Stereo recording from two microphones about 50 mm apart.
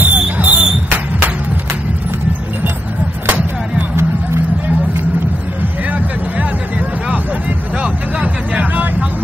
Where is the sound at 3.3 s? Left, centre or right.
Right.